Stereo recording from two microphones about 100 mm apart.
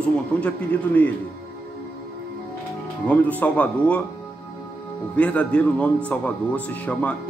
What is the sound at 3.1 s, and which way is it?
Speech, 15° left (ahead or behind).